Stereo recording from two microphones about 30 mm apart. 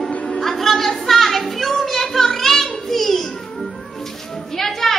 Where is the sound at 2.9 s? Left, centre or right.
Centre.